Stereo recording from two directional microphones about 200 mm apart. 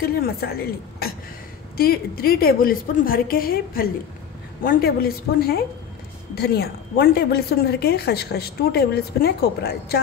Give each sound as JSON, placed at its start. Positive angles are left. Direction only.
{"t": 0.0, "sound": "a woman's voice", "side_deg": 50}